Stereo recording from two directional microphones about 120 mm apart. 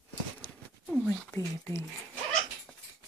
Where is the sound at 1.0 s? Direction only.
15° left (ahead or behind).